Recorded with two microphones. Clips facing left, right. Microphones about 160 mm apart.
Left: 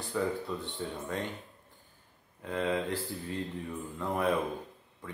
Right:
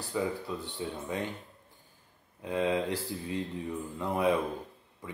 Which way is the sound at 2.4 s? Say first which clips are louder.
Right 2 dB; 15° right (ahead or behind).